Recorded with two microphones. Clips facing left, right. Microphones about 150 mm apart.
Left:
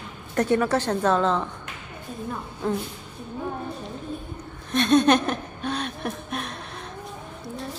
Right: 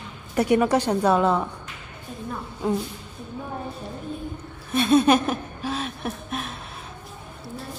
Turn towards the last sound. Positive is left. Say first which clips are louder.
# even
turn(degrees=0)  # may be behind; listen again after turning